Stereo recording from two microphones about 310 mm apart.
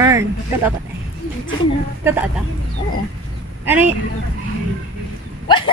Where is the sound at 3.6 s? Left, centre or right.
Centre.